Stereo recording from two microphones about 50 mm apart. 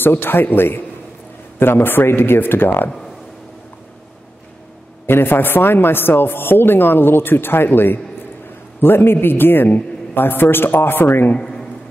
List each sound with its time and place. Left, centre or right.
0.0 s speech: left
5.0 s speech: left
11.3 s a sound: centre